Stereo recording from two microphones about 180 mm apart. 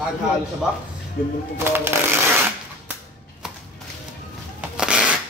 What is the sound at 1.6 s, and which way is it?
Speech, 15° right (ahead or behind).